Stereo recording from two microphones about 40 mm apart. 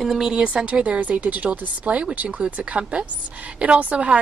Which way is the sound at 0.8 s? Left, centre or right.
Right.